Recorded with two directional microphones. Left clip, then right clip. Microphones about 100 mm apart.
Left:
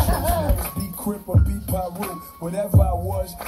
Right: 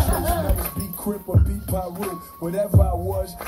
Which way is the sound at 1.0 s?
35° left (ahead or behind).